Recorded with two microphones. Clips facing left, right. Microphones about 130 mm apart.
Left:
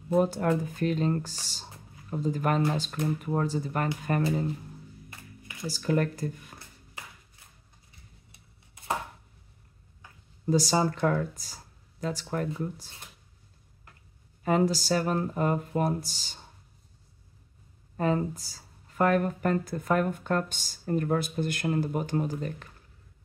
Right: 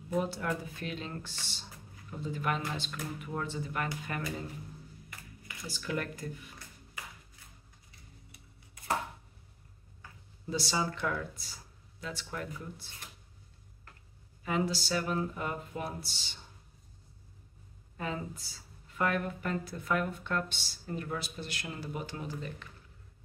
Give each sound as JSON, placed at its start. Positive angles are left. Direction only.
{"t": 0.2, "sound": "speech", "side_deg": 45}
{"t": 5.7, "sound": "speech", "side_deg": 40}
{"t": 10.4, "sound": "speech", "side_deg": 40}
{"t": 14.4, "sound": "speech", "side_deg": 45}
{"t": 17.9, "sound": "speech", "side_deg": 40}